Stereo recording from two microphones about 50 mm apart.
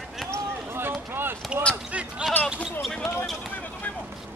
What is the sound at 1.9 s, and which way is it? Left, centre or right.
Basketball bounce, right.